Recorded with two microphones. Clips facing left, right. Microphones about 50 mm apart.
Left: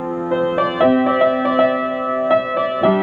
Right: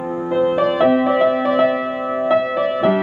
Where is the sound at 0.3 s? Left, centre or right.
Centre.